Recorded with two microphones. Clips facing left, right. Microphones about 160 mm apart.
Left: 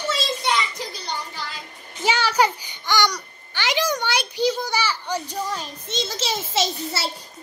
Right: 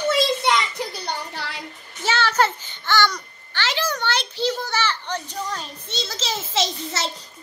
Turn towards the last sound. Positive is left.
turn(degrees=10)  # may be behind; listen again after turning